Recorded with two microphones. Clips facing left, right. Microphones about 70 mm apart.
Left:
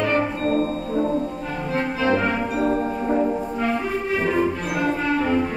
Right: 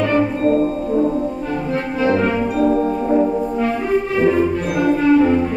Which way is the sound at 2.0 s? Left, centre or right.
Centre.